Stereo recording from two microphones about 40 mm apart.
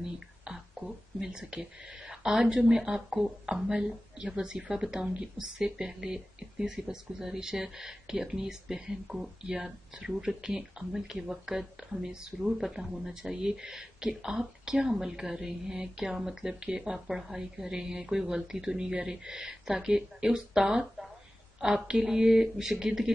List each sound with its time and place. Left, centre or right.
0.0 s a sound: centre
1.3 s speech: right
5.4 s speech: centre
16.9 s speech: centre